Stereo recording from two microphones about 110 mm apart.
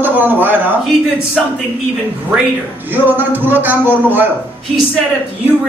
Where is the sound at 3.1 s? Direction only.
15° right (ahead or behind).